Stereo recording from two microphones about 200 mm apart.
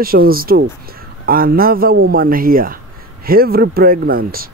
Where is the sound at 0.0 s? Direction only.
45° right (ahead or behind).